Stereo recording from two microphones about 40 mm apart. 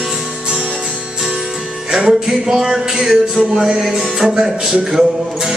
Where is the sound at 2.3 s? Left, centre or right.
Centre.